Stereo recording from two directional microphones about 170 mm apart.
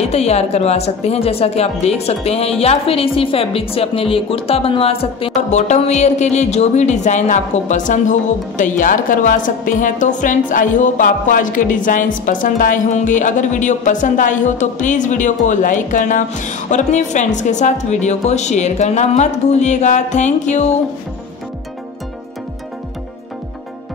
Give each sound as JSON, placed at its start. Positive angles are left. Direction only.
{"t": 0.0, "sound": "a woman's voice", "side_deg": 40}